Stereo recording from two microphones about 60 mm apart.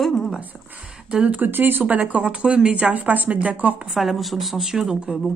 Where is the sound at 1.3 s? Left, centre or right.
Right.